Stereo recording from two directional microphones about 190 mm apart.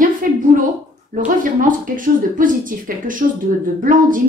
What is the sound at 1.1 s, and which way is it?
A woman's voice, 45° right (ahead or behind).